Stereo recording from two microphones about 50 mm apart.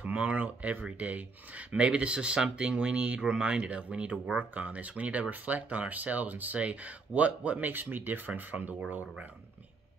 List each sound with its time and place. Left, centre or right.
0.0 s speech: right